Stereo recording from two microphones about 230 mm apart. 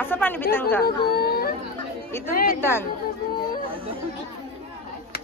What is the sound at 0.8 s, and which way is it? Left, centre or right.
Speech, left.